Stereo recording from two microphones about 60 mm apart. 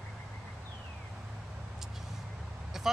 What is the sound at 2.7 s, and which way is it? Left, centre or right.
Vehicle, centre.